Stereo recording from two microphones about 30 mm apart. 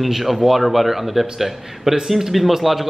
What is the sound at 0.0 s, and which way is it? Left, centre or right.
A man's voice, centre.